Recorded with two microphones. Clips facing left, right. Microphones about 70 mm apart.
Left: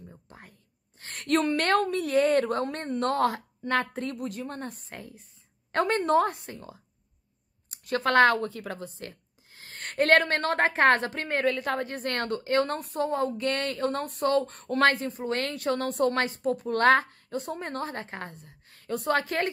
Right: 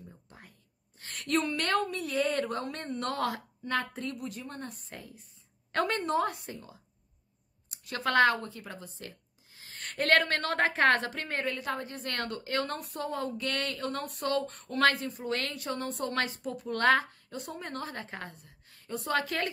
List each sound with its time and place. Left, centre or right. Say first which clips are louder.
0.3 s whispering: left 4 dB; left
1.3 s a woman's voice: left 5 dB; left
5.7 s a woman's voice: left 4 dB; left
6.2 s a woman's voice: left 3 dB; left
7.7 s speech: left 5 dB; left
8.4 s a woman's voice: left 8 dB; left
11.4 s a woman's voice: left 7 dB; left
12.1 s speech: left 6 dB; left
15.5 s a woman's voice: left 7 dB; left
16.1 s speech: left 6 dB; left
18.9 s a woman's voice: left 7 dB; left
19.1 s speech: even; left